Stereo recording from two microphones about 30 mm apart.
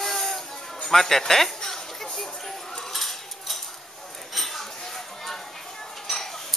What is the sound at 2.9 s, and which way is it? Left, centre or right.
Cutlery, centre.